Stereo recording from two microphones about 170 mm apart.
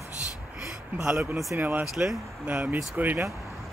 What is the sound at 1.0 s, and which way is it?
Speech, 5° right (ahead or behind).